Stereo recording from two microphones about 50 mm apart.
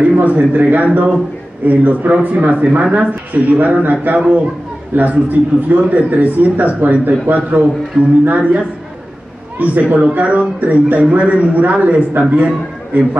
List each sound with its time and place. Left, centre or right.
0.2 s a man's voice: right
9.6 s a man's voice: right